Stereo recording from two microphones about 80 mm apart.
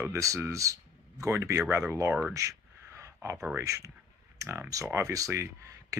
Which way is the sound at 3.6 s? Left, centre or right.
Right.